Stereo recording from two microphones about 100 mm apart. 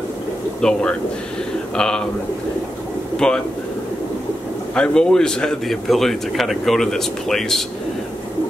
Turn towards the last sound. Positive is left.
turn(degrees=5)  # may be behind; listen again after turning